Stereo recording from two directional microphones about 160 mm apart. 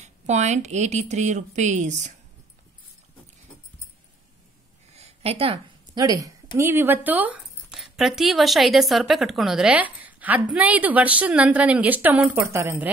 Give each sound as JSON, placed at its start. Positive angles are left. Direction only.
{"t": 0.0, "sound": "speech", "side_deg": -45}
{"t": 4.9, "sound": "a sound", "side_deg": -40}
{"t": 5.9, "sound": "speech", "side_deg": -20}